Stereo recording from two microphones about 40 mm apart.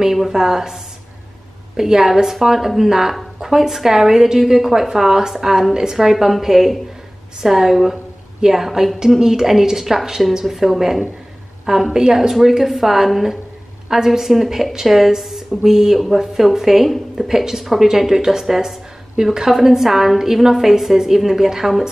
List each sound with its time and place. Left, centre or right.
0.0 s speech: centre
1.8 s a woman's voice: centre